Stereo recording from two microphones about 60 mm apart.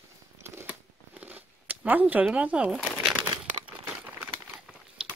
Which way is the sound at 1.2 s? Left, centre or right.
Right.